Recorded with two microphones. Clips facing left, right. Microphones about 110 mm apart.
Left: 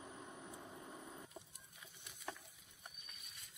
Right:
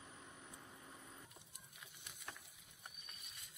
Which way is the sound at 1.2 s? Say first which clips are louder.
Left 5 dB; centre (ahead or behind).